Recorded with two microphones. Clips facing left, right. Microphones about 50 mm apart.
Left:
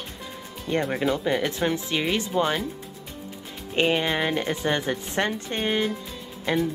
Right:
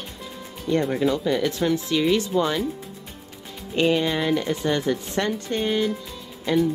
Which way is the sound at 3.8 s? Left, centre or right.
Left.